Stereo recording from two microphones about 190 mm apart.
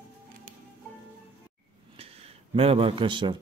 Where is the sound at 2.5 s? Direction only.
30° right (ahead or behind).